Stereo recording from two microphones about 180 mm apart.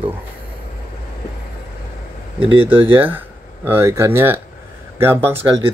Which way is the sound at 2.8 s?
10° right (ahead or behind).